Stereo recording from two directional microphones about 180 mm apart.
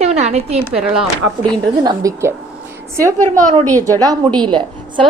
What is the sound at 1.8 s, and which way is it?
Speech, 20° right (ahead or behind).